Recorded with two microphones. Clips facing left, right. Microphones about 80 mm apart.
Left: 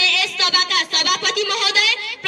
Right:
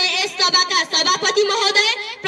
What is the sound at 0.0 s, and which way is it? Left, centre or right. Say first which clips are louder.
Speech: right 1 dB; right.